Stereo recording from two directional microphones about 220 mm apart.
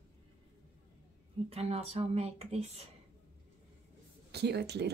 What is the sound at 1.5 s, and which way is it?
Speech, 25° right (ahead or behind).